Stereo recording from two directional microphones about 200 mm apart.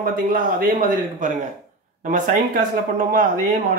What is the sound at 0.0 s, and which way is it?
Speech, 45° right (ahead or behind).